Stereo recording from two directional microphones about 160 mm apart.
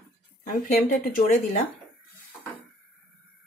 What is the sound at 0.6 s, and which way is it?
Speech, 55° left (ahead or behind).